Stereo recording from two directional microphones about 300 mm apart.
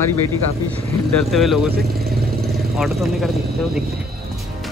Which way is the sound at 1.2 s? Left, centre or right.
Centre.